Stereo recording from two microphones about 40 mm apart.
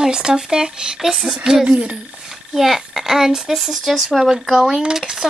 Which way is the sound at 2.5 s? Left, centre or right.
Centre.